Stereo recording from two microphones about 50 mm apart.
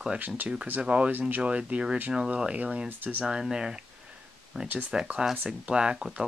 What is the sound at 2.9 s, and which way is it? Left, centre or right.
Speech, right.